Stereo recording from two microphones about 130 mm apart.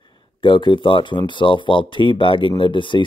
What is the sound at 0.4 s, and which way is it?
Speech, 35° left (ahead or behind).